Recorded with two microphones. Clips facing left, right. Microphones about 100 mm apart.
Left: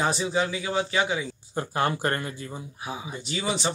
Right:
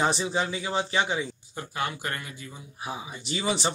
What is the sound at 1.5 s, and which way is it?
Speech, 40° left (ahead or behind).